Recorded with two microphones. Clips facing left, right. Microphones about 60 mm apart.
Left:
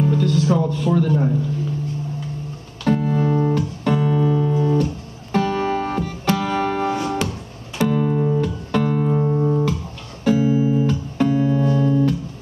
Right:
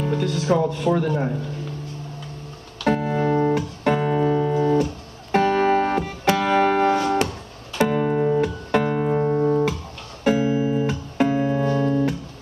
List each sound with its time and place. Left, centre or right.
0.0 s music: right
0.7 s a man's voice: right
2.8 s music: right